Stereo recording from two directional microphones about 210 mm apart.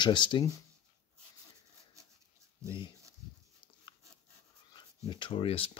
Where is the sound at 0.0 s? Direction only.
20° left (ahead or behind).